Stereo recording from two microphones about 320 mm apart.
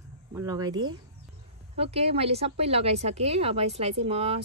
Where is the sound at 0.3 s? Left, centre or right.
Centre.